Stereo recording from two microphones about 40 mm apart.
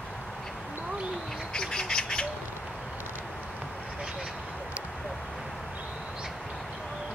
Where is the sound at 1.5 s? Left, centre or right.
Centre.